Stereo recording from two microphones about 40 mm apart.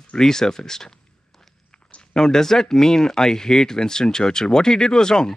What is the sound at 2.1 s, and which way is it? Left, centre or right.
Speech, centre.